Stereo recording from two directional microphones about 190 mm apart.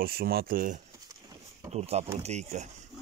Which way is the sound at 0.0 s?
55° right (ahead or behind).